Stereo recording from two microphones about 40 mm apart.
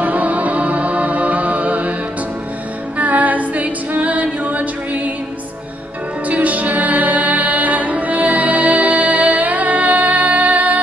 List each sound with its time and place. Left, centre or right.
0.0 s music: right
3.0 s music: right
6.2 s music: right